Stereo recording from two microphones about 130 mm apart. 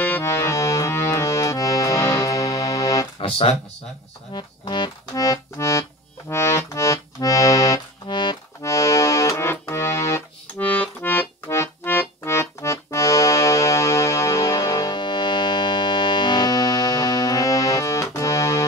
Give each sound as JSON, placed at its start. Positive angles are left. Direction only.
{"t": 0.0, "sound": "accordion", "side_deg": 20}
{"t": 3.2, "sound": "speech", "side_deg": 45}
{"t": 4.3, "sound": "accordion", "side_deg": 35}
{"t": 8.6, "sound": "accordion", "side_deg": 25}